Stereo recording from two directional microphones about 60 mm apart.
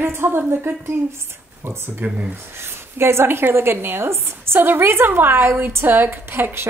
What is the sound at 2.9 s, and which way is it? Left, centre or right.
A woman's voice, right.